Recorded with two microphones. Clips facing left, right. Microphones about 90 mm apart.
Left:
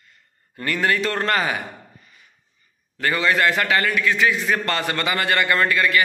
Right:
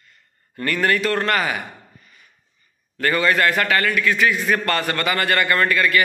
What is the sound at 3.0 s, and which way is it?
A man's voice, 15° left (ahead or behind).